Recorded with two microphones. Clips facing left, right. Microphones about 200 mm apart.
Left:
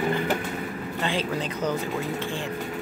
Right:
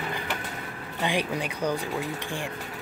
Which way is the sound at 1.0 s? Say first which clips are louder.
Even; 15° right (ahead or behind).